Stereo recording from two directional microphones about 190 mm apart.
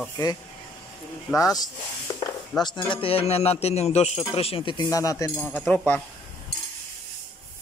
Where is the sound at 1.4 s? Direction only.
20° left (ahead or behind).